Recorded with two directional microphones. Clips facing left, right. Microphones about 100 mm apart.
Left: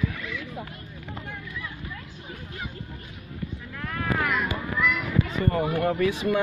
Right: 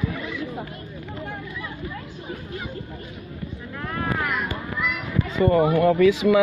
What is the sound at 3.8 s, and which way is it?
Vehicle, 20° right (ahead or behind).